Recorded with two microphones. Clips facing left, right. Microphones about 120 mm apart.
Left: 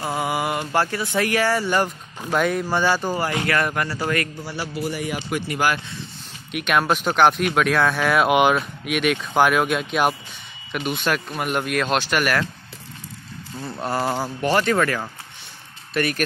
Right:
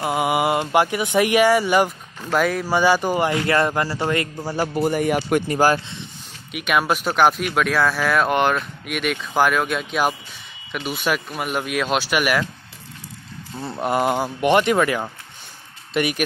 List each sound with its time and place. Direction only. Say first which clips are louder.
0.0 s speech: right 4 dB; 20° right (ahead or behind)
2.3 s speech: right 1 dB; centre (ahead or behind)
2.7 s speech: right 3 dB; 15° right (ahead or behind)
4.4 s speech: right 6 dB; 45° right (ahead or behind)
5.5 s speech: right 4 dB; 40° right (ahead or behind)
6.5 s speech: even; 5° right (ahead or behind)
13.6 s speech: right 4 dB; 20° right (ahead or behind)